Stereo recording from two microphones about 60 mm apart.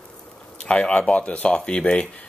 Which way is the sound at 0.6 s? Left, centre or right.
Centre.